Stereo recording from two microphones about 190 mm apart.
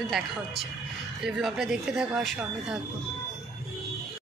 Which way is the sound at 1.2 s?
Centre (ahead or behind).